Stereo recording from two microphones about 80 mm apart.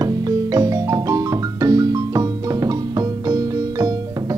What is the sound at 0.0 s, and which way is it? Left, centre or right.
Music, right.